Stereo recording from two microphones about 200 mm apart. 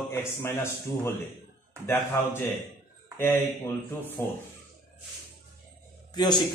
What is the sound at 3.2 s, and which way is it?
Speech, 10° left (ahead or behind).